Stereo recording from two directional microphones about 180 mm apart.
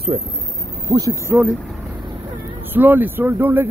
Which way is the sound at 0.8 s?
20° right (ahead or behind).